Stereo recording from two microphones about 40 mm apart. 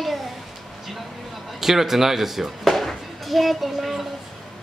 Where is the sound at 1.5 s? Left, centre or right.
Centre.